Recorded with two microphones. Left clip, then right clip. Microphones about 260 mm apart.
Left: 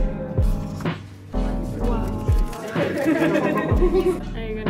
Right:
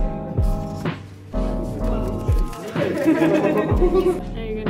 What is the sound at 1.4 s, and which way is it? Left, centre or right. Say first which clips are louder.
Music: right 1 dB; centre.